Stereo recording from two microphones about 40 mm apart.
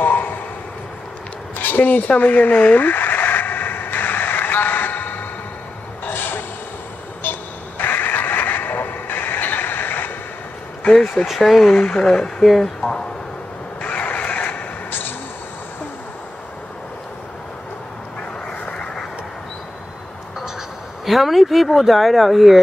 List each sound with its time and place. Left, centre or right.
0.0 s a sound: left
1.6 s a sound: left
6.0 s vehicle: left
7.8 s vehicle: left
11.2 s speech: centre
11.6 s speech: centre
12.4 s speech: centre
13.7 s vehicle: left
14.9 s a sound: left
21.0 s speech: centre